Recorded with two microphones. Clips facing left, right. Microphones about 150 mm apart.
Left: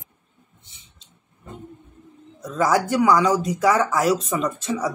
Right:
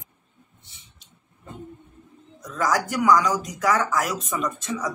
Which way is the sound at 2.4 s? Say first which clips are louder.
Left 4 dB; 30° left (ahead or behind).